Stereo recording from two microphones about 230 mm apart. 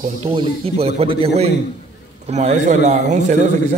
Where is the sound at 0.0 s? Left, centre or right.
Right.